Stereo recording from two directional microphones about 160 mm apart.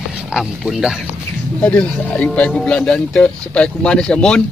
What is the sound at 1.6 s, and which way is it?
Speech, 5° left (ahead or behind).